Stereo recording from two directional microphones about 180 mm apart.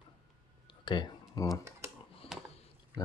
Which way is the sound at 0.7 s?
25° left (ahead or behind).